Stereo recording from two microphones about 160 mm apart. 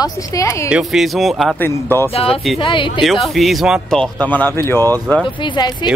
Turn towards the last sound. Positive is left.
turn(degrees=30)  # may be behind; listen again after turning